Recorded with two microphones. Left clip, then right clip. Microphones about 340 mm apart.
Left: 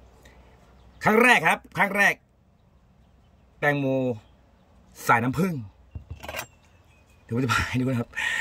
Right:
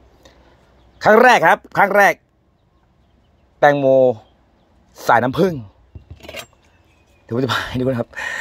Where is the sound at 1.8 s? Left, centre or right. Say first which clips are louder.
Right 9 dB; right.